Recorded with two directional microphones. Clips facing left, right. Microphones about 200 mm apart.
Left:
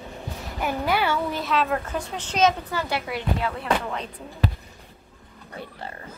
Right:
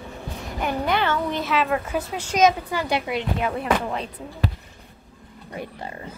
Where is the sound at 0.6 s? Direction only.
5° left (ahead or behind); by 3.9 s 20° right (ahead or behind).